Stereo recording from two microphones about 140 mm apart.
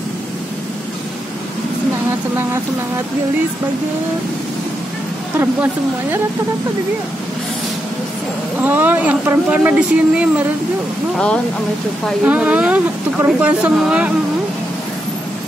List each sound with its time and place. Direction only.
5.4 s a woman's voice: 15° right (ahead or behind)
8.6 s a woman's voice: 15° right (ahead or behind)
12.3 s a woman's voice: 10° right (ahead or behind)